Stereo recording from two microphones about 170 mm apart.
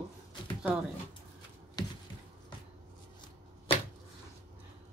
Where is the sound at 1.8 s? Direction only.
25° left (ahead or behind).